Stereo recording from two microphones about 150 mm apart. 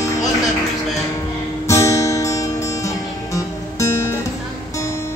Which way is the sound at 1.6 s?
20° left (ahead or behind).